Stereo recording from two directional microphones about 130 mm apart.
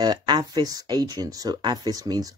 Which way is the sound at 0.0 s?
35° right (ahead or behind).